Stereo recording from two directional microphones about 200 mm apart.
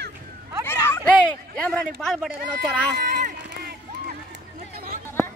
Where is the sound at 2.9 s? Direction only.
50° right (ahead or behind).